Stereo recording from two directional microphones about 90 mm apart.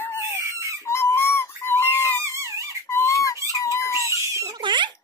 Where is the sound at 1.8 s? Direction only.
25° left (ahead or behind).